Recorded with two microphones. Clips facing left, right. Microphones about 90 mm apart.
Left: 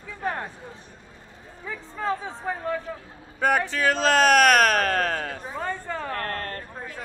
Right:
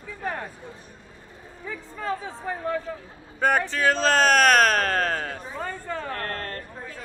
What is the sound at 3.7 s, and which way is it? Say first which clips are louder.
Speech: even; 35° right (ahead or behind).